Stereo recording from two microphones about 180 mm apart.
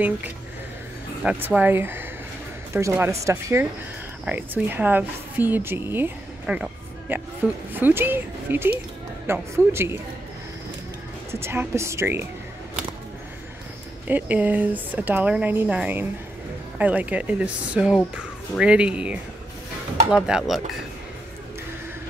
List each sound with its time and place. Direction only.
1.2 s a woman's voice: 10° right (ahead or behind)
11.3 s speech: 15° right (ahead or behind)
14.0 s speech: 10° right (ahead or behind)